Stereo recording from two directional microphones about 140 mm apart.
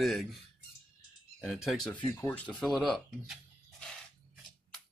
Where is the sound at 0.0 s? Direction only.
Centre (ahead or behind).